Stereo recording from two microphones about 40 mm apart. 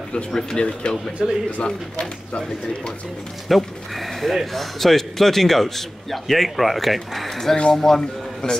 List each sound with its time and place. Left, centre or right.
0.6 s speech: left
1.2 s speech: centre
1.6 s speech: left
3.4 s a man's voice: centre